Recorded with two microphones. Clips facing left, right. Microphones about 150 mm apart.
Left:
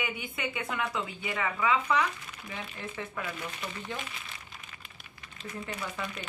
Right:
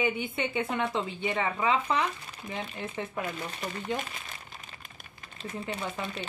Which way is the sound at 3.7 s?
45° right (ahead or behind).